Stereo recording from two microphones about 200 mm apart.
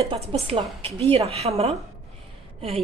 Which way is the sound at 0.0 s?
30° right (ahead or behind).